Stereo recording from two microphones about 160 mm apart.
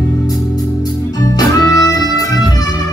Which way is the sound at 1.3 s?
20° left (ahead or behind).